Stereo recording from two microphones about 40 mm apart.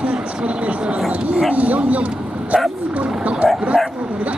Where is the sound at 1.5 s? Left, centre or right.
Right.